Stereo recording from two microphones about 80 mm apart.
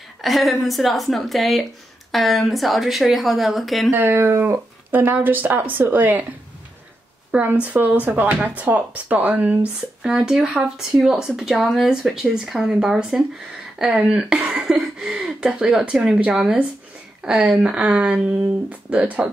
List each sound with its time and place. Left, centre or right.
0.2 s speech: centre
3.9 s speech: right
7.2 s speech: centre
10.0 s speech: centre
14.3 s a sound: centre
15.1 s speech: centre